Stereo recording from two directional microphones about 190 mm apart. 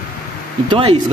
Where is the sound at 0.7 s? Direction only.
30° right (ahead or behind).